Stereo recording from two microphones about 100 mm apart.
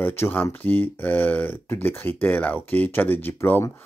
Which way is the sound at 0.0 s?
20° left (ahead or behind).